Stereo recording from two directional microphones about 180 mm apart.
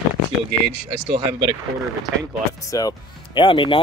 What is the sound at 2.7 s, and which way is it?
Speech, 20° left (ahead or behind).